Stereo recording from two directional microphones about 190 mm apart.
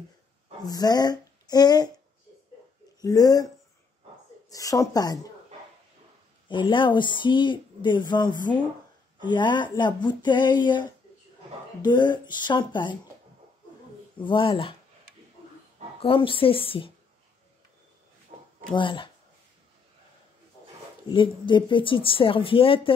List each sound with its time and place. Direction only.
0.7 s speech: 20° left (ahead or behind)
3.0 s speech: 20° left (ahead or behind)
4.5 s speech: 15° left (ahead or behind)
6.5 s speech: 25° left (ahead or behind)
14.2 s speech: 25° left (ahead or behind)
16.0 s speech: 30° left (ahead or behind)
18.8 s speech: 25° left (ahead or behind)
21.1 s speech: 25° left (ahead or behind)